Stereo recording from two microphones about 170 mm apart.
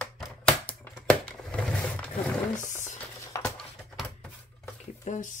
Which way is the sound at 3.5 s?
Centre (ahead or behind).